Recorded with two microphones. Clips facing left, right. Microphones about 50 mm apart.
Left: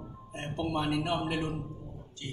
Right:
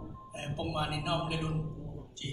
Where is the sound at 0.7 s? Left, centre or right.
Centre.